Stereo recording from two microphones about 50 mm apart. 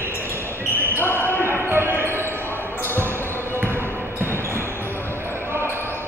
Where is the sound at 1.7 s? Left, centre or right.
Right.